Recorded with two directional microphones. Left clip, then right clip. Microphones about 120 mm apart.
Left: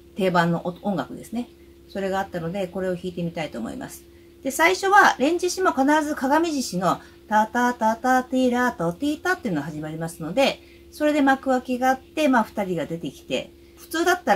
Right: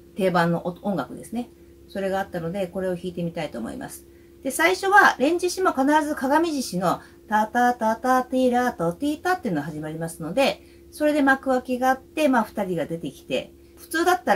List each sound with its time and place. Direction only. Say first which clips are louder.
0.1 s speech: even; 5° left (ahead or behind)